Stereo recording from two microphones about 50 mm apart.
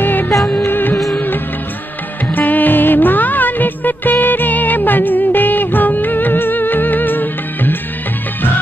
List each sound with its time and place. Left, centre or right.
0.0 s music: left
0.7 s music of bollywood: left
2.3 s music: left